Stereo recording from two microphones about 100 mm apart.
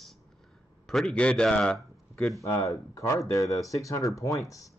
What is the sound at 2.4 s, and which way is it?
Speech, 30° left (ahead or behind).